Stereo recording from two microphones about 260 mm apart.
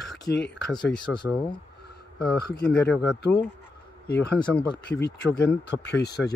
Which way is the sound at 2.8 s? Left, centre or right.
Centre.